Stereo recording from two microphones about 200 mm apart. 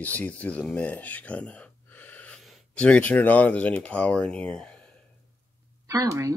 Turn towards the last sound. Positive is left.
turn(degrees=-15)  # may be behind; listen again after turning